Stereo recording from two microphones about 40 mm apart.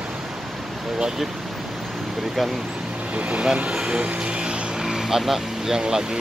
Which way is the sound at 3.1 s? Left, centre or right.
Right.